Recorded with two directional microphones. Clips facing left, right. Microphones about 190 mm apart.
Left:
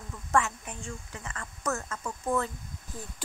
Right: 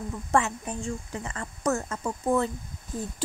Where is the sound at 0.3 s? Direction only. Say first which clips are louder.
Right 2 dB; 30° right (ahead or behind).